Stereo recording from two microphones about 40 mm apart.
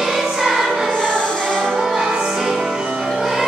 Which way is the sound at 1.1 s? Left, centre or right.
Left.